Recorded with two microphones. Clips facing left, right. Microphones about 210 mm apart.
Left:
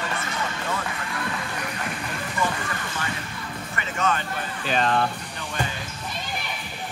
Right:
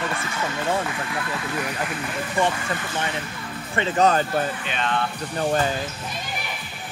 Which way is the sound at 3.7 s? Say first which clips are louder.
Right 7 dB; 30° right (ahead or behind).